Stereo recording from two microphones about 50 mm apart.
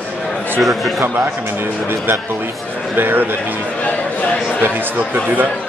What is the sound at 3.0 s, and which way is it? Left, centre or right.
Speech, right.